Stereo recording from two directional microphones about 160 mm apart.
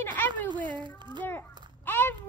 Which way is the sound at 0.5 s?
30° right (ahead or behind).